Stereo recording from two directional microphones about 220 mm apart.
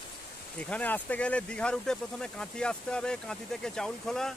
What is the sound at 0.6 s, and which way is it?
Speech, 5° left (ahead or behind).